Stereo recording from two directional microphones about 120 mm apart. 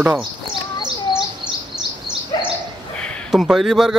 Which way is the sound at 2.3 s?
35° left (ahead or behind).